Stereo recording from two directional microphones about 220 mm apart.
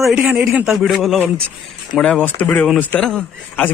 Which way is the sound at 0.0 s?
Centre (ahead or behind).